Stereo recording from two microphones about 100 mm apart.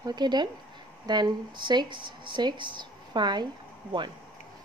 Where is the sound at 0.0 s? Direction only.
45° right (ahead or behind).